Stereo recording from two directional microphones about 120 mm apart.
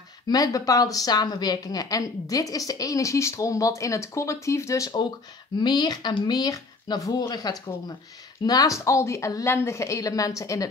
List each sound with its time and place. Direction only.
0.3 s speech: 30° left (ahead or behind)